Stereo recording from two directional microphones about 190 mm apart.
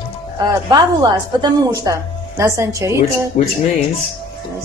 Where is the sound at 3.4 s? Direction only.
35° left (ahead or behind).